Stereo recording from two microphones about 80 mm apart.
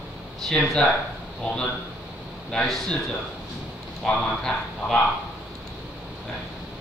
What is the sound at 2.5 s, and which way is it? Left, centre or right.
Speech, centre.